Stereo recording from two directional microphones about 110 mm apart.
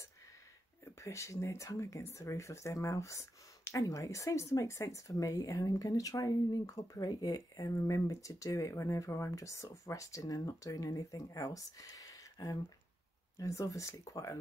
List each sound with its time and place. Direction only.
0.8 s speech: 25° left (ahead or behind)